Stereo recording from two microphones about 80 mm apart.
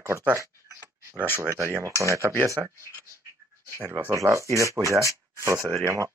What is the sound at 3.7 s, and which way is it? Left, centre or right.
Speech, right.